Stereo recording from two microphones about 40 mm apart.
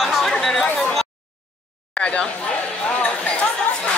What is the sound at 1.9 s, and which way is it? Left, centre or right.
Chatter, left.